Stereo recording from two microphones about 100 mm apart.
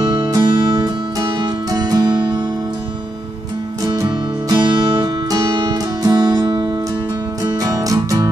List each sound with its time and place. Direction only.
0.0 s music: 50° right (ahead or behind)
3.8 s music: 40° right (ahead or behind)